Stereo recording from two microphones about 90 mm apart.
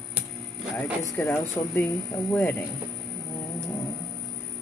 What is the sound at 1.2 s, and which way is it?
Speech, 25° left (ahead or behind).